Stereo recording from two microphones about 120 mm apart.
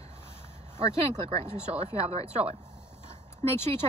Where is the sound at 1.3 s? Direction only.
65° right (ahead or behind).